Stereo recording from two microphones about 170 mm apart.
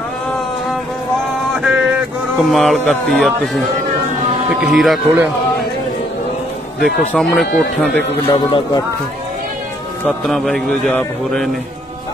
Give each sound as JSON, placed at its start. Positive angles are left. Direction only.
{"t": 1.6, "sound": "a sound", "side_deg": -5}
{"t": 4.6, "sound": "a man's voice", "side_deg": 0}
{"t": 7.2, "sound": "a man's voice", "side_deg": 0}
{"t": 8.3, "sound": "a man's voice", "side_deg": 30}
{"t": 10.0, "sound": "a man's voice", "side_deg": 0}